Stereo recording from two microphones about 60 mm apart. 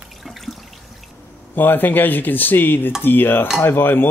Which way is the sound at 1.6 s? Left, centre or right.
Left.